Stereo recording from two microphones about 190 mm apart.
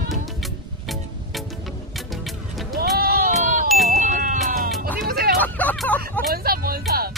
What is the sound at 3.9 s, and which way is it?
Music, 40° right (ahead or behind).